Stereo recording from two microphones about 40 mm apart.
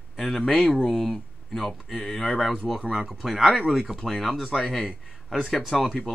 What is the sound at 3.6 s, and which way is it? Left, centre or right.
Speech, centre.